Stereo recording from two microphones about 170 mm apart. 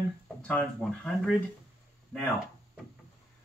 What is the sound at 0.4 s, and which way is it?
Speech, 10° left (ahead or behind).